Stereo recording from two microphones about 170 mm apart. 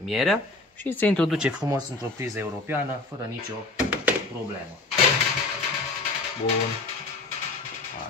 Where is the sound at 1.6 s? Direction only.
20° right (ahead or behind).